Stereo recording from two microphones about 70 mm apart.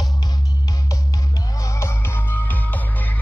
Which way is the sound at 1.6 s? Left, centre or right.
Left.